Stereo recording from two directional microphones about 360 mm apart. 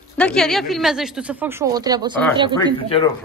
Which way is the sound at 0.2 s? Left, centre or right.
Centre.